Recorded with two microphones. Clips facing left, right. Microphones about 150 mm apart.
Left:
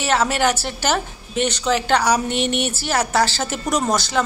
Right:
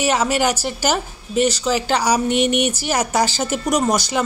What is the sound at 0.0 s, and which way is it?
Speech, 10° right (ahead or behind).